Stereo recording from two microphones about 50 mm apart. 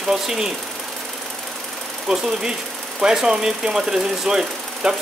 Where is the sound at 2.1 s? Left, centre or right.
Centre.